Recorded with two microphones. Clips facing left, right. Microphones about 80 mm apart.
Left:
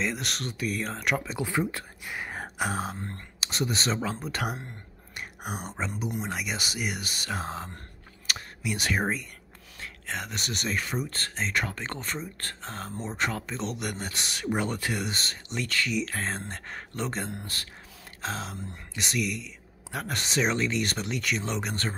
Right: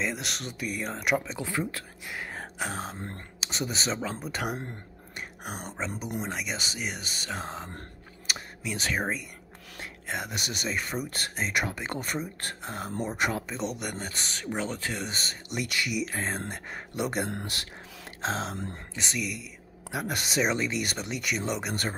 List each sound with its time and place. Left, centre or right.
0.0 s speech: centre
1.4 s speech: centre
8.3 s a sound: centre
8.6 s speech: centre
9.8 s speech: centre
11.1 s speech: centre
18.2 s speech: right
18.9 s speech: centre